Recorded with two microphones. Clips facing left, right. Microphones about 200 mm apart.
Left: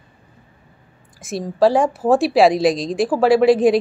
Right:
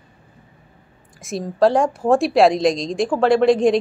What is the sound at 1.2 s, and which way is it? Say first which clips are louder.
A woman's voice: left 1 dB; centre (ahead or behind).